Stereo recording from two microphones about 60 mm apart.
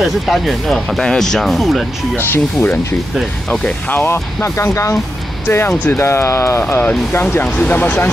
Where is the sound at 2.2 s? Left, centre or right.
Left.